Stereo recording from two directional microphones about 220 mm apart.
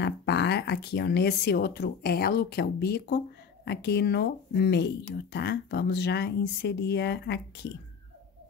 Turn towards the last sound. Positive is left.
turn(degrees=50)  # may be behind; listen again after turning